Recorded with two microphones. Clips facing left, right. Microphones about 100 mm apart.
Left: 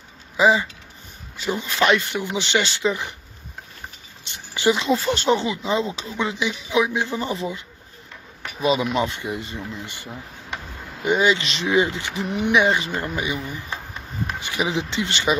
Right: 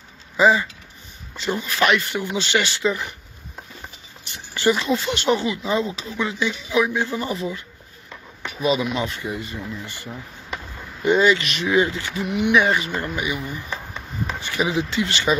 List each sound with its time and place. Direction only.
0.4 s speech: 15° left (ahead or behind)
1.6 s speech: 25° left (ahead or behind)
4.2 s a sound: 20° left (ahead or behind)
4.8 s speech: 35° left (ahead or behind)
6.4 s speech: 20° left (ahead or behind)
8.9 s speech: 30° left (ahead or behind)
11.0 s speech: 15° left (ahead or behind)